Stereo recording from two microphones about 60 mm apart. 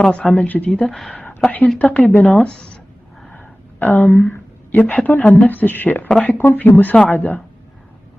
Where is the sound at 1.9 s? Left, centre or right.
Left.